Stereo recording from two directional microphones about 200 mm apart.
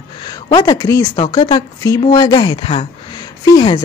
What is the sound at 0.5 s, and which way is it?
Speech, 20° left (ahead or behind).